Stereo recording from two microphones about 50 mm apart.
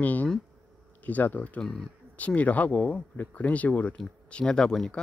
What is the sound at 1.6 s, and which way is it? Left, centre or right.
Speech, centre.